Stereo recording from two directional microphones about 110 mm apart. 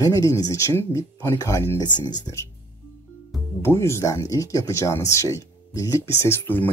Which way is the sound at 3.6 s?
25° left (ahead or behind).